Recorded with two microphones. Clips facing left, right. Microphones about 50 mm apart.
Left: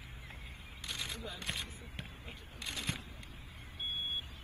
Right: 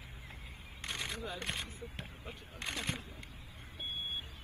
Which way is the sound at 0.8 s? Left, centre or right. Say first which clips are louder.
Right 2 dB; right.